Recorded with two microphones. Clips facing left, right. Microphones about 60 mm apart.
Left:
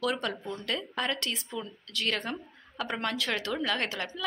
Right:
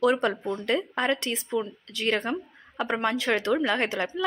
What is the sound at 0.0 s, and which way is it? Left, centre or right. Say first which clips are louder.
Speech: right 8 dB; right.